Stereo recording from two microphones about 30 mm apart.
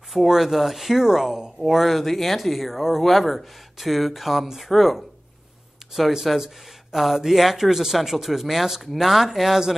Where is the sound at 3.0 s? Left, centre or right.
Centre.